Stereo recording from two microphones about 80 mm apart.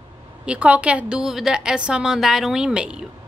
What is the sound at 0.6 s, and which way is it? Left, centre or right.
A woman's voice, centre.